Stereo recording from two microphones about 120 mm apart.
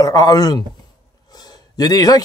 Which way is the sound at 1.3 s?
35° left (ahead or behind).